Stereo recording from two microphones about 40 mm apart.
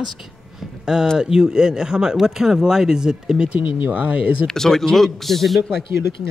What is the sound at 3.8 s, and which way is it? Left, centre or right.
Speech, right.